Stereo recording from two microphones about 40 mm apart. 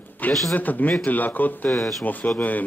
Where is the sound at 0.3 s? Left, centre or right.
Centre.